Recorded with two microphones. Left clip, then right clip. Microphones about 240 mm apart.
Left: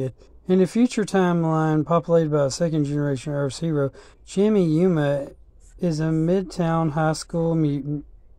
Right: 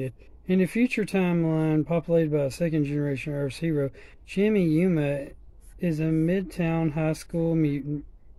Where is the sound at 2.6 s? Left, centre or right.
Left.